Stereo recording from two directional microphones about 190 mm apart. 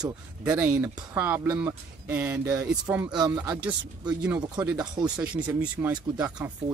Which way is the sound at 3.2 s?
20° right (ahead or behind).